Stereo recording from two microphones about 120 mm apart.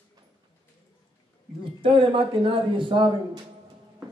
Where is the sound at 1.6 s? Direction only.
45° right (ahead or behind).